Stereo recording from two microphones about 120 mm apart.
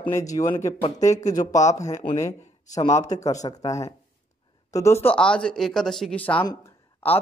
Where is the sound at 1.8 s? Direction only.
75° left (ahead or behind).